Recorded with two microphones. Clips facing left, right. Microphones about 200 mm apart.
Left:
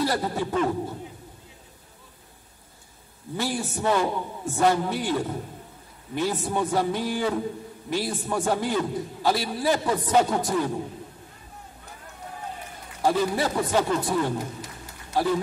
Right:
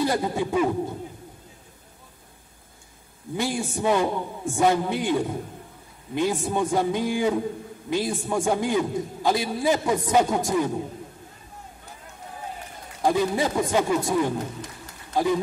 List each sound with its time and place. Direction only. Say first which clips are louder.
0.0 s a man's voice: right 2 dB; 15° right (ahead or behind)
3.3 s a man's voice: right 2 dB; 15° right (ahead or behind)
13.0 s a man's voice: right 1 dB; 15° right (ahead or behind)